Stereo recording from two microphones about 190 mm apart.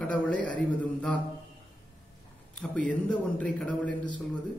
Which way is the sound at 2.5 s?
5° left (ahead or behind).